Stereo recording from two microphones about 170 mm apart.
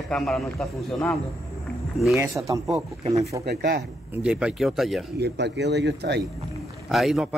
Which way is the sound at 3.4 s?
70° right (ahead or behind).